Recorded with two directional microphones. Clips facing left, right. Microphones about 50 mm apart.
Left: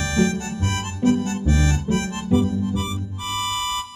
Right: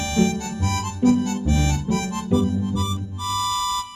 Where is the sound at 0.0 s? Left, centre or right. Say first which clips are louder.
Even; left.